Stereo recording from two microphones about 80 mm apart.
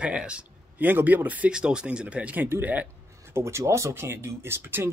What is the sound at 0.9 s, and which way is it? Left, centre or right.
Speech, right.